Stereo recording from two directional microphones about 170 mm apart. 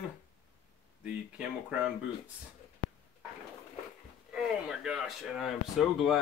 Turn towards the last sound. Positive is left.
turn(degrees=0)  # may be behind; listen again after turning